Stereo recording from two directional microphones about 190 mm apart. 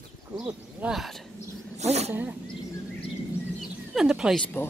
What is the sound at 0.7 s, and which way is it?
Speech, 5° right (ahead or behind).